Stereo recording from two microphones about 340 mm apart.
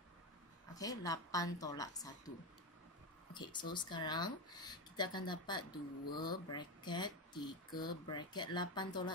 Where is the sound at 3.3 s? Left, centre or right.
Centre.